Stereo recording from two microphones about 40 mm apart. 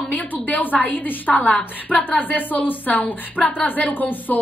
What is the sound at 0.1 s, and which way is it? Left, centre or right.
A woman's voice, left.